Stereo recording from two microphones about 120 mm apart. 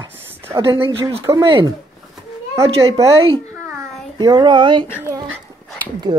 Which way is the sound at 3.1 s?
50° right (ahead or behind).